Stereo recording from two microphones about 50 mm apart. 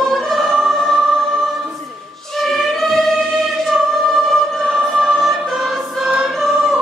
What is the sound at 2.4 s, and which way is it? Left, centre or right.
Music, centre.